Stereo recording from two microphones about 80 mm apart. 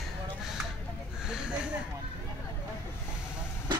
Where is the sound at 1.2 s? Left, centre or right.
Centre.